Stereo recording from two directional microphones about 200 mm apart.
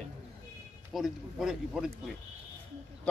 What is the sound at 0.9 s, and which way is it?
Speech, centre (ahead or behind).